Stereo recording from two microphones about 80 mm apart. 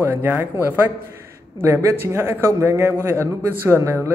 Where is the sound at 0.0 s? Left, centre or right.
Right.